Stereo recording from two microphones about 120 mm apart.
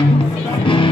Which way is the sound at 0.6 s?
45° left (ahead or behind).